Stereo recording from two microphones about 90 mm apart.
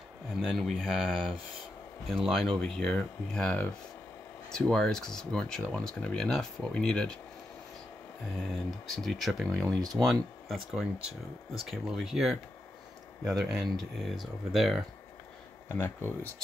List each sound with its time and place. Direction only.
0.4 s speech: 5° left (ahead or behind)
2.1 s speech: centre (ahead or behind)
8.6 s speech: centre (ahead or behind)
9.8 s speech: 45° right (ahead or behind)
10.0 s speech: 5° right (ahead or behind)
15.7 s speech: 25° left (ahead or behind)